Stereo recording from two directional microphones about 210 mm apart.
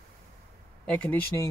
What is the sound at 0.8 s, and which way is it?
Speech, 5° left (ahead or behind).